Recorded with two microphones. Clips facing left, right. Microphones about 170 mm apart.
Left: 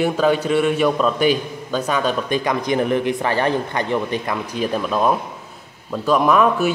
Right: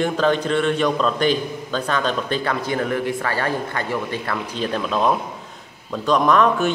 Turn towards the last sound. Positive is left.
turn(degrees=5)  # may be behind; listen again after turning